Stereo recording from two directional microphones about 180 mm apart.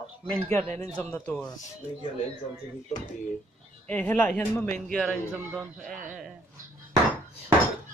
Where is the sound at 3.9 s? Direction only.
10° left (ahead or behind).